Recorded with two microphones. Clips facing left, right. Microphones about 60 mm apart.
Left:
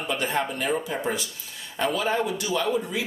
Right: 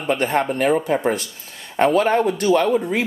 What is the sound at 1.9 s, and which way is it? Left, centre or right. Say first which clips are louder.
Speech: right 8 dB; right.